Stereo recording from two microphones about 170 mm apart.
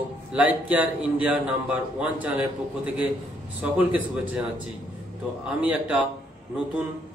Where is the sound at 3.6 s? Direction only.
10° right (ahead or behind).